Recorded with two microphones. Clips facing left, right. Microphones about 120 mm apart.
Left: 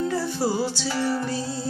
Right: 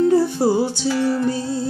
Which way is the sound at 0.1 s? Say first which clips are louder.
Right 9 dB; 20° right (ahead or behind).